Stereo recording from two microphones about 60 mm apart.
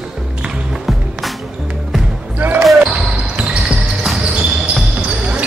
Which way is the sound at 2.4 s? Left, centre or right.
Right.